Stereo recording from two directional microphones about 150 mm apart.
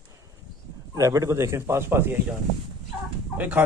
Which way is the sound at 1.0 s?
20° right (ahead or behind).